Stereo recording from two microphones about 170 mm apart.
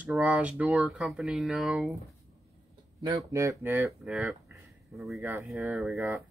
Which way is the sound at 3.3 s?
15° right (ahead or behind).